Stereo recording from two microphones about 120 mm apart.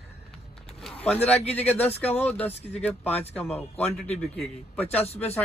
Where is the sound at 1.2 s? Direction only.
60° left (ahead or behind).